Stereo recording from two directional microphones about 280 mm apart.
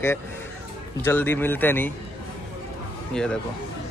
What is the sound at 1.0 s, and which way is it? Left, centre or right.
Speech, centre.